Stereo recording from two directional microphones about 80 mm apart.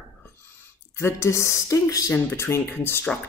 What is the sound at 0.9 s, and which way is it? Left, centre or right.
Speech, left.